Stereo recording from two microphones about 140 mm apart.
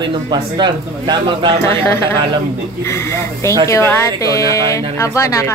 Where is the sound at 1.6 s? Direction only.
15° left (ahead or behind).